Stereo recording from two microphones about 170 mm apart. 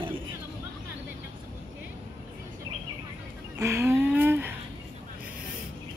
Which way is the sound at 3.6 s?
15° right (ahead or behind).